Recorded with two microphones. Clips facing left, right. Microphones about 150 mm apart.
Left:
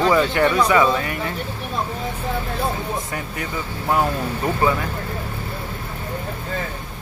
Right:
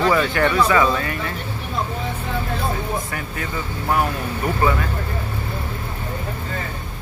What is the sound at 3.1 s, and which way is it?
Speech, 20° left (ahead or behind).